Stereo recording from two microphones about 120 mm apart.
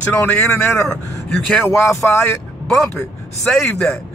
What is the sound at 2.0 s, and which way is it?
Speech, 20° left (ahead or behind).